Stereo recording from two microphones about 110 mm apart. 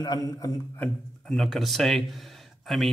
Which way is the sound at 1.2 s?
Centre (ahead or behind).